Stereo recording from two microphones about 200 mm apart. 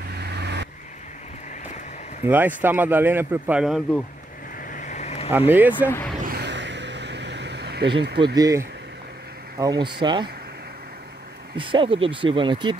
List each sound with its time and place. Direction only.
0.2 s vehicle: 55° right (ahead or behind)
2.2 s a man's voice: 10° right (ahead or behind)
4.6 s vehicle: 40° left (ahead or behind)
5.5 s a man's voice: 10° right (ahead or behind)
5.9 s speech: 10° left (ahead or behind)
6.2 s a sound: 55° right (ahead or behind)
8.4 s a man's voice: 15° right (ahead or behind)
11.5 s speech: 25° right (ahead or behind)